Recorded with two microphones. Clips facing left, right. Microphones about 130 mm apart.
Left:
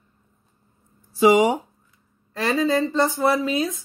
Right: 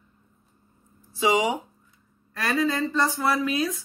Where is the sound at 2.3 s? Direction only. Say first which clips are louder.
Left 4 dB; 25° left (ahead or behind).